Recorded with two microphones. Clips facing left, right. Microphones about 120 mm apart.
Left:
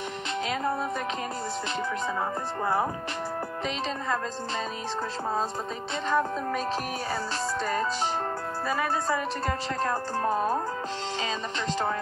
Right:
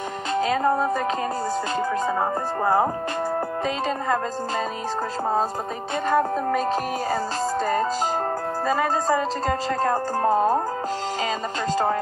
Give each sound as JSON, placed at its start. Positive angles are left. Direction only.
{"t": 0.3, "sound": "music", "side_deg": -40}
{"t": 2.0, "sound": "music", "side_deg": -45}
{"t": 6.0, "sound": "music", "side_deg": -50}
{"t": 8.6, "sound": "speech", "side_deg": -40}